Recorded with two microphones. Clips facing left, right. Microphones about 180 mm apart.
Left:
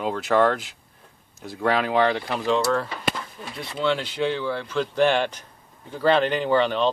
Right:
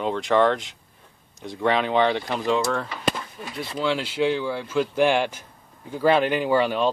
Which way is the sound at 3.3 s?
5° right (ahead or behind).